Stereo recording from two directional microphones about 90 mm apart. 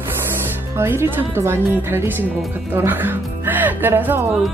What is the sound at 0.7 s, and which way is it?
Speech, 30° right (ahead or behind).